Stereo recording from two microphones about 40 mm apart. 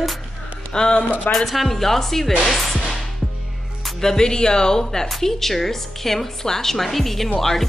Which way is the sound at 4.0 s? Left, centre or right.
Centre.